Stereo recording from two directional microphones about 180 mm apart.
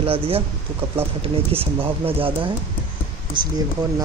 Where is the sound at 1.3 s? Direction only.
30° right (ahead or behind).